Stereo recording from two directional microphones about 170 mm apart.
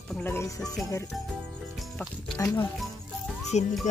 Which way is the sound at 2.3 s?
15° left (ahead or behind).